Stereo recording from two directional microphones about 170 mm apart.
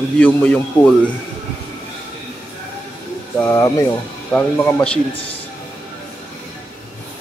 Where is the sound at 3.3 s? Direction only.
15° left (ahead or behind).